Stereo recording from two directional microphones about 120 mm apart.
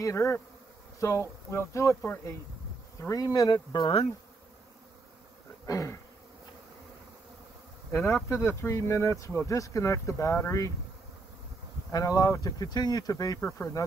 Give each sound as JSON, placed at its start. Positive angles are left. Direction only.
{"t": 0.0, "sound": "speech", "side_deg": 25}
{"t": 3.0, "sound": "speech", "side_deg": 30}
{"t": 5.7, "sound": "insect", "side_deg": 25}
{"t": 8.3, "sound": "speech", "side_deg": 25}
{"t": 11.9, "sound": "speech", "side_deg": 30}
{"t": 13.4, "sound": "speech", "side_deg": 20}